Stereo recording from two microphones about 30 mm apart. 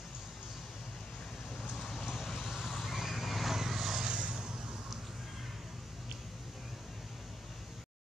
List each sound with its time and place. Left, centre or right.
1.8 s vehicle: centre
2.0 s neigh: centre
3.5 s vehicle: centre
4.0 s vehicle: right